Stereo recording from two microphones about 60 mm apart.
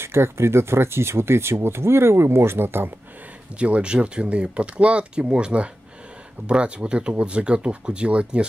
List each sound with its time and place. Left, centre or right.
0.0 s speech: right
3.5 s speech: centre